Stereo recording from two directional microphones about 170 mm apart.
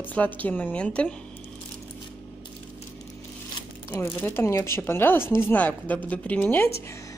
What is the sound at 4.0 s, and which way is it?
A woman's voice, 10° left (ahead or behind).